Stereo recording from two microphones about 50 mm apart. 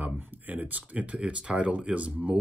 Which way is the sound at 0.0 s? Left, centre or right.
Right.